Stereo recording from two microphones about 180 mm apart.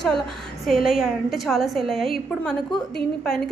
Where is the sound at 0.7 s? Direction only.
Centre (ahead or behind).